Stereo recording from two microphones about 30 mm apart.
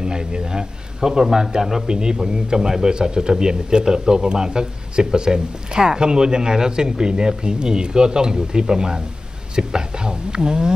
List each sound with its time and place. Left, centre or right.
0.0 s speech: right